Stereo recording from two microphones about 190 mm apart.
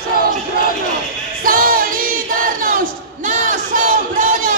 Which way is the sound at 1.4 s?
50° right (ahead or behind).